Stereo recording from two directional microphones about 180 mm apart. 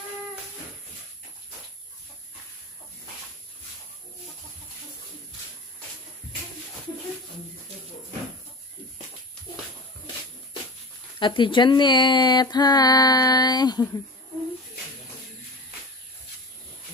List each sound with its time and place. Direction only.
11.1 s speech: 25° left (ahead or behind)